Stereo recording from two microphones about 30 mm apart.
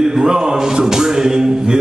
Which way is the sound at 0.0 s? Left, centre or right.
Right.